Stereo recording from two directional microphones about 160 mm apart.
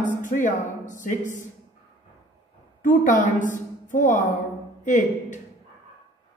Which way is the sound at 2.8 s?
55° left (ahead or behind).